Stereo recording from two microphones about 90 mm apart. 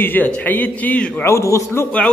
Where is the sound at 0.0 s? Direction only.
20° left (ahead or behind).